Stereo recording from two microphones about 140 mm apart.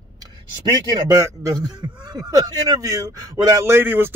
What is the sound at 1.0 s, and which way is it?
A man's voice, 25° right (ahead or behind).